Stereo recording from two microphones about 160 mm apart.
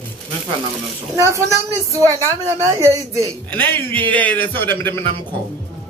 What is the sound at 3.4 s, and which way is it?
A man's voice, 10° left (ahead or behind).